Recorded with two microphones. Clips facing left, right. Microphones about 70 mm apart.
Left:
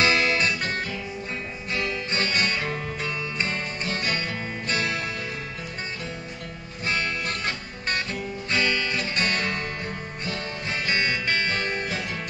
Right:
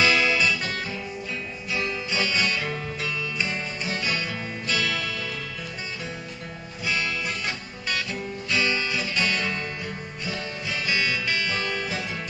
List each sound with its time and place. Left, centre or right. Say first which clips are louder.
0.0 s music: even; left
2.0 s music: right 1 dB; left
3.4 s music: left 1 dB; centre
4.0 s music: even; left
6.8 s music: even; left
10.7 s music: left 1 dB; left